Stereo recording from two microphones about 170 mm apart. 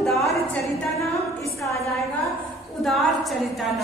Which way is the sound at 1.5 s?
20° left (ahead or behind).